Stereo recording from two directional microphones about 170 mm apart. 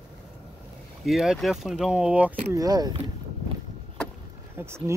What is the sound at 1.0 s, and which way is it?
Speech, centre (ahead or behind).